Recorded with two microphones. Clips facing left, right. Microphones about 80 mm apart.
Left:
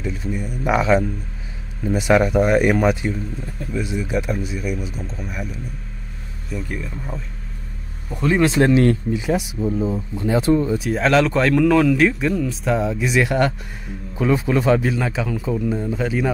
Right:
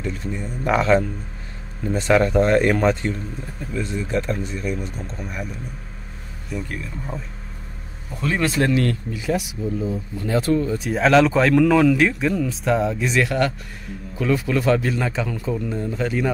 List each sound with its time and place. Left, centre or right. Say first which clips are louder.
0.0 s a man's voice: left 2 dB; centre
8.1 s speech: left 5 dB; centre
10.8 s speech: right 1 dB; centre
13.2 s speech: left 2 dB; left
14.8 s a man's voice: left 1 dB; centre